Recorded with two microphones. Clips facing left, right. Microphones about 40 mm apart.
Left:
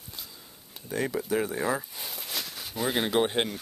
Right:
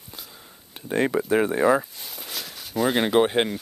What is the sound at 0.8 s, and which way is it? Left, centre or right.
Speech, right.